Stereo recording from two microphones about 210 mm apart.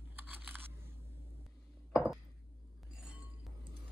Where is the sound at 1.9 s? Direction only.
5° right (ahead or behind).